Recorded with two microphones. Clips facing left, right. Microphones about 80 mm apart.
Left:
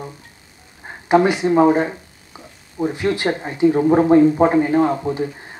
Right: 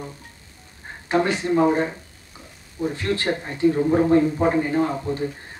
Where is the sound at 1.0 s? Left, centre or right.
Centre.